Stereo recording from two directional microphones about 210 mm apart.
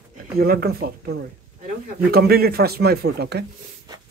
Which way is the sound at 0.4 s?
45° right (ahead or behind).